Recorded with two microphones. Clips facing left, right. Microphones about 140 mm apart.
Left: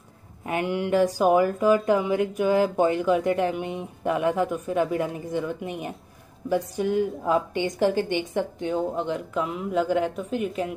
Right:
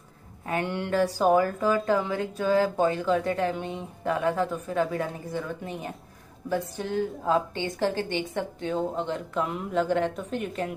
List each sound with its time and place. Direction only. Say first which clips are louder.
0.5 s speech: left 3 dB; 10° left (ahead or behind)